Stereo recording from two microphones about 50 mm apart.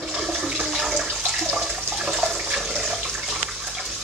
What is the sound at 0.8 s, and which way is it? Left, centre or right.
Water, centre.